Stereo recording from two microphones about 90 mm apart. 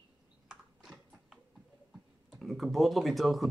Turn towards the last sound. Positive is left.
turn(degrees=0)  # may be behind; listen again after turning